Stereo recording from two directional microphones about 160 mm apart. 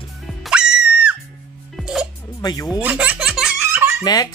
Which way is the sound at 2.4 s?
25° left (ahead or behind).